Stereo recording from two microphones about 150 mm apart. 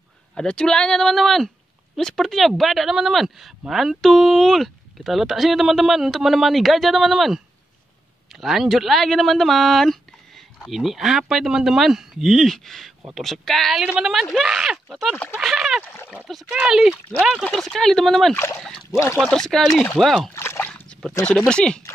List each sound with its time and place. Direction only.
0.3 s speech: 5° left (ahead or behind)
15.8 s speech: 15° left (ahead or behind)
16.3 s speech: centre (ahead or behind)
18.9 s speech: 20° left (ahead or behind)
19.2 s speech: 5° left (ahead or behind)
20.3 s splash: 15° left (ahead or behind)
21.3 s speech: 5° left (ahead or behind)